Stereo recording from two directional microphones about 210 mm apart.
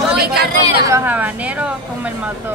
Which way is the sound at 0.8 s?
10° right (ahead or behind).